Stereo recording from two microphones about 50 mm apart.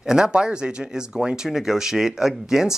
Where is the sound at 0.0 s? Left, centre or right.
Centre.